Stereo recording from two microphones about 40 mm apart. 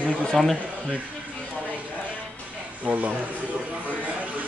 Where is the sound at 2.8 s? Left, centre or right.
Right.